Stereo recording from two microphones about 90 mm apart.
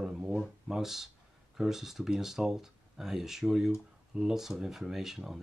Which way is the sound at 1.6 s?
5° right (ahead or behind).